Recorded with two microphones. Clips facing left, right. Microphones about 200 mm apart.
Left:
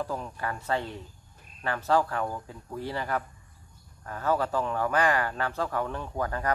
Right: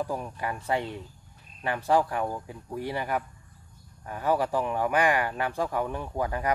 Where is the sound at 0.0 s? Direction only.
15° right (ahead or behind).